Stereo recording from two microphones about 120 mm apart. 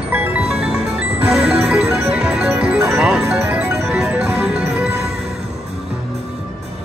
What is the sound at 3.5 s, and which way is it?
Music, 15° right (ahead or behind).